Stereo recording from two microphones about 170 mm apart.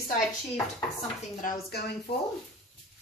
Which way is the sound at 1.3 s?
55° left (ahead or behind).